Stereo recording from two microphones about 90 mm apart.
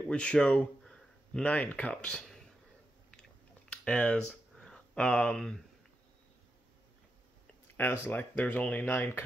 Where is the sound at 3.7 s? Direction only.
10° left (ahead or behind).